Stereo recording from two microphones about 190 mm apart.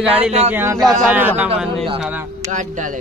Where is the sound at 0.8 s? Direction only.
Centre (ahead or behind).